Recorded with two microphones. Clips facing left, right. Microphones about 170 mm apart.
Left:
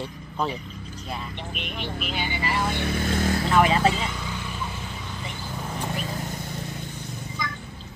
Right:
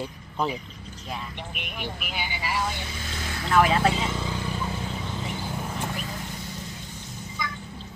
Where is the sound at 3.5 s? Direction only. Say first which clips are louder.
Even; centre (ahead or behind).